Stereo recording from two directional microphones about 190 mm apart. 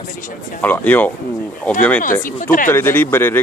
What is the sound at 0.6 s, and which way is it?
Speech, 10° left (ahead or behind).